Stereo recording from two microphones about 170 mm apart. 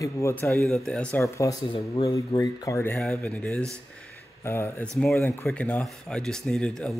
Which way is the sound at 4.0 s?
15° left (ahead or behind).